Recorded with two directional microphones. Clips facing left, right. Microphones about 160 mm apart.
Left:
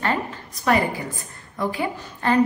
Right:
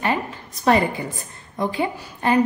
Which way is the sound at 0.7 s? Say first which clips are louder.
Right 2 dB; 25° right (ahead or behind).